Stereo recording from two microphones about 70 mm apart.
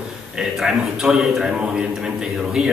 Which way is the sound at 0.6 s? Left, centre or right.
Centre.